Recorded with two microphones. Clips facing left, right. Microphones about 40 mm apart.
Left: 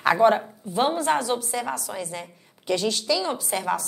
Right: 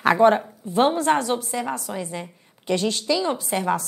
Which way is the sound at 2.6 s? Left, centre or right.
Right.